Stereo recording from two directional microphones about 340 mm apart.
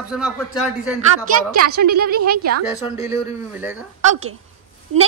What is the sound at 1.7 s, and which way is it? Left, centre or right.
Speech, right.